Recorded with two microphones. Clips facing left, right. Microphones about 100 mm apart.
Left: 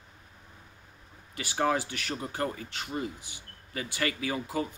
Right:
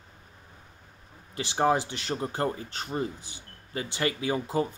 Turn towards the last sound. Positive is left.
turn(degrees=-25)  # may be behind; listen again after turning